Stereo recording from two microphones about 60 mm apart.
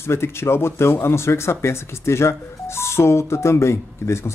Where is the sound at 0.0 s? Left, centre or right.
Left.